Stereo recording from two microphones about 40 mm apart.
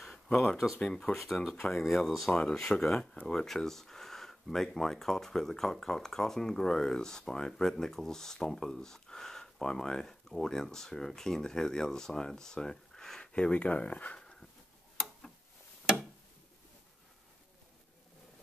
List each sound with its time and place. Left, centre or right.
0.0 s a sound: centre
1.1 s speech: centre
2.3 s speech: centre
13.2 s speech: left